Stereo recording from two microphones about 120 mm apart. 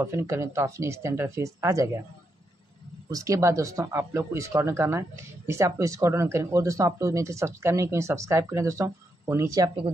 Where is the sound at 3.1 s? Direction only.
30° right (ahead or behind).